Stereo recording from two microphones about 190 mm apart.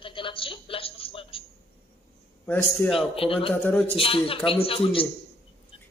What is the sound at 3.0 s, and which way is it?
A woman's voice, 30° left (ahead or behind).